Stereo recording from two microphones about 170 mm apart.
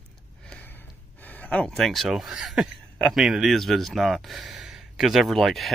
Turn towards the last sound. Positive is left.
turn(degrees=0)  # may be behind; listen again after turning